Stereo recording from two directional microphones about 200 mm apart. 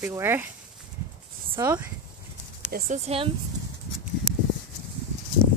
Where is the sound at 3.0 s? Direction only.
30° right (ahead or behind).